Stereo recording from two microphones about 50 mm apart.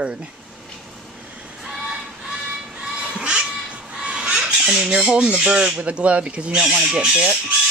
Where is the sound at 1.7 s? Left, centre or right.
Centre.